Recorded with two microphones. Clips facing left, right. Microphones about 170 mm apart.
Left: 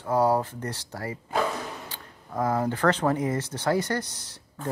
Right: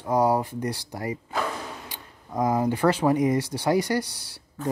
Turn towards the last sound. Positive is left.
turn(degrees=-10)  # may be behind; listen again after turning